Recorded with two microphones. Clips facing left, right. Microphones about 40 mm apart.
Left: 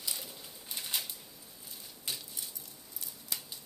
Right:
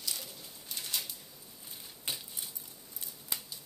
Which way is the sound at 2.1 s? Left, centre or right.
Right.